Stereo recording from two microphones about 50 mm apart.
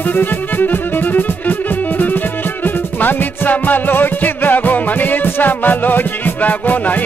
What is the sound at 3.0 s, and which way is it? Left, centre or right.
Music, left.